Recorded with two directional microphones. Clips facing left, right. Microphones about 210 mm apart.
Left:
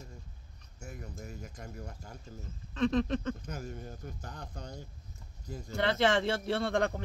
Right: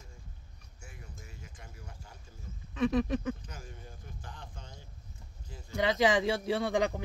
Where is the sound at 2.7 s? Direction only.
10° right (ahead or behind).